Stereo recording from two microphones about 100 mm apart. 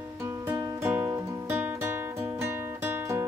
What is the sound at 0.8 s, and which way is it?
Music, 20° right (ahead or behind).